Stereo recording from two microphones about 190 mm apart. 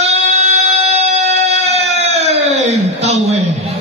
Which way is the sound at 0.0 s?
35° right (ahead or behind).